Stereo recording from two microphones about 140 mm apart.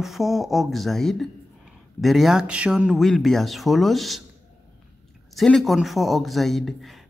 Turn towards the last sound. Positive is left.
turn(degrees=0)  # may be behind; listen again after turning